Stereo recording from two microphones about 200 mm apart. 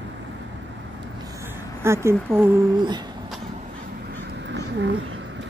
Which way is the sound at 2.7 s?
20° right (ahead or behind).